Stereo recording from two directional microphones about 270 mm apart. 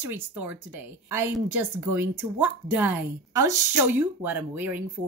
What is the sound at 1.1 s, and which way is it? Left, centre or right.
A woman's voice, centre.